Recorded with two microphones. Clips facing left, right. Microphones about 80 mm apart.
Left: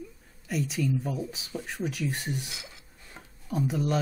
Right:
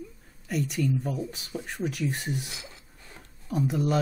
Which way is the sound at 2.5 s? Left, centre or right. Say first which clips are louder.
Right 1 dB; right.